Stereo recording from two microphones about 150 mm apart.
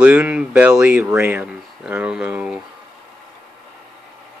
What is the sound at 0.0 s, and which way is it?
Speech, 10° right (ahead or behind).